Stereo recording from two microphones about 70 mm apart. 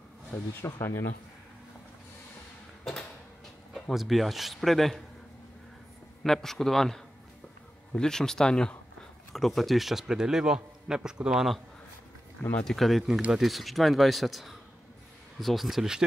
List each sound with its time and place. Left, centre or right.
0.7 s speech: left
2.8 s a sound: centre
3.9 s speech: centre
6.2 s a man's voice: centre
12.6 s speech: centre